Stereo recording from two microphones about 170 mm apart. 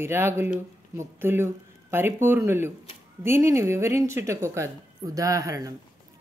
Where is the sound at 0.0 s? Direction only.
15° right (ahead or behind).